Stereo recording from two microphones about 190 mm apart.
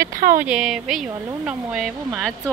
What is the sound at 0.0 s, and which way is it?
Speech, 45° right (ahead or behind).